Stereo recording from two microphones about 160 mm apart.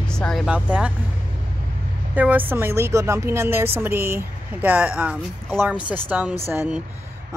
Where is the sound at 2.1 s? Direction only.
10° right (ahead or behind).